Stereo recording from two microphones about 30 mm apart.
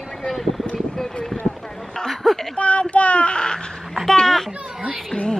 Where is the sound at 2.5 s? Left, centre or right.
Left.